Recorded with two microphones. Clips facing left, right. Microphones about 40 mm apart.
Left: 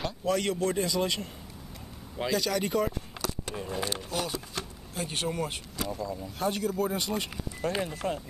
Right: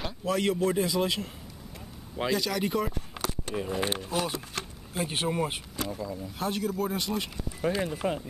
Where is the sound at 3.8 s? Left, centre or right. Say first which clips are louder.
Right 2 dB; right.